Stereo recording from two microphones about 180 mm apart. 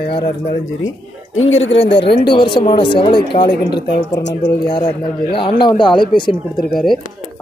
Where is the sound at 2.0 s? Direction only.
65° left (ahead or behind).